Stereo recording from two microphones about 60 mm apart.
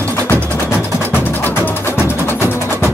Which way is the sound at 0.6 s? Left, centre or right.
Left.